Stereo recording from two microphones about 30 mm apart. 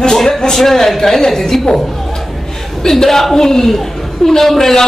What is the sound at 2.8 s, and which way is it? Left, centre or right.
A man's voice, centre.